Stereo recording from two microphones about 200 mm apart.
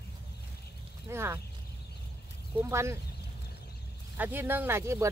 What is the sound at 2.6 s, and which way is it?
Speech, 15° right (ahead or behind).